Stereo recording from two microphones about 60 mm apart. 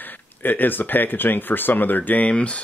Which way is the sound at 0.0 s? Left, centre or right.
Left.